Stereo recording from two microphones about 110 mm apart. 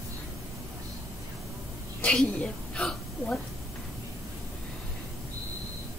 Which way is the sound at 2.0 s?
10° left (ahead or behind).